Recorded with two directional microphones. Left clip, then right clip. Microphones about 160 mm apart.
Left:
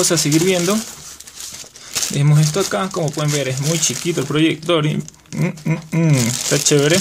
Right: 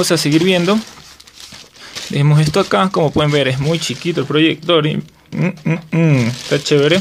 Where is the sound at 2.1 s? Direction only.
25° right (ahead or behind).